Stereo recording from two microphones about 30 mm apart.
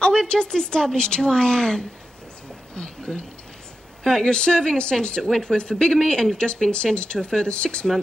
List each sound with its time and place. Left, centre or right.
0.0 s speech: left
3.1 s speech: left